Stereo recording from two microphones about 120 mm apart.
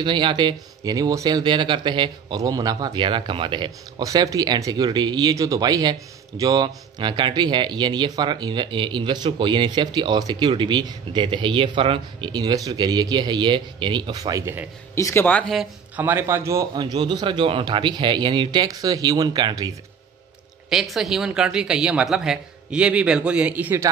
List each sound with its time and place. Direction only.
0.0 s speech: 40° right (ahead or behind)
4.0 s speech: 30° right (ahead or behind)
15.0 s speech: 25° left (ahead or behind)
15.2 s speech: 10° left (ahead or behind)
16.0 s a man's voice: 20° right (ahead or behind)
16.7 s speech: 35° right (ahead or behind)
20.7 s speech: centre (ahead or behind)